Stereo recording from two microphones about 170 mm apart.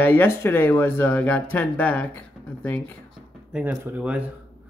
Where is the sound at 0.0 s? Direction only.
10° left (ahead or behind).